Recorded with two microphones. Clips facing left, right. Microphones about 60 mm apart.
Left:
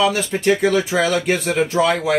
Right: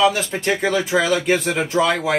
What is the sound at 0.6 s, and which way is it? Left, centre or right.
Speech, right.